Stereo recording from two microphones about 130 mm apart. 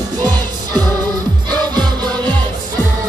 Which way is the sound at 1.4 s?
35° right (ahead or behind).